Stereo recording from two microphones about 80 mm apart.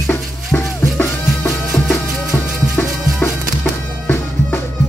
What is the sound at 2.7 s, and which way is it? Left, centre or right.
Music, left.